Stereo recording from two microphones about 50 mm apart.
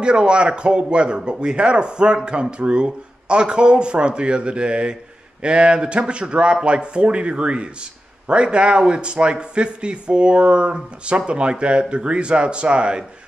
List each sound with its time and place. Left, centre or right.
0.0 s speech: centre